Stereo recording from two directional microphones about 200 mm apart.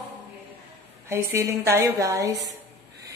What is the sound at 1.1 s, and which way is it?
A woman's voice, 15° right (ahead or behind).